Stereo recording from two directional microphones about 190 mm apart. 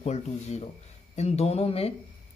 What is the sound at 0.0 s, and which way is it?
Speech, 35° left (ahead or behind).